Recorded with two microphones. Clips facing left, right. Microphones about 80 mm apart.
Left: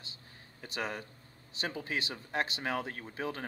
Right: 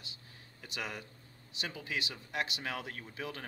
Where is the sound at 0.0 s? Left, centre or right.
Left.